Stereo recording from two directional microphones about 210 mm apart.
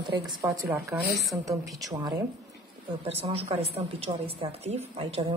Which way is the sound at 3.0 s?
30° right (ahead or behind).